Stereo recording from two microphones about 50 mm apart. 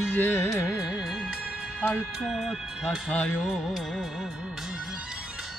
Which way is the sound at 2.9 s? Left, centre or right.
Left.